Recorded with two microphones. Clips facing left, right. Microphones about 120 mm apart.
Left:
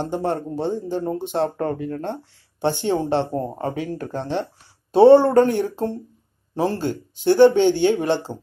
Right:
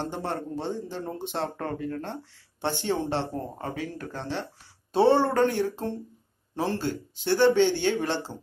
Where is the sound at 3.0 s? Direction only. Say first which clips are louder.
Left 7 dB; 20° left (ahead or behind).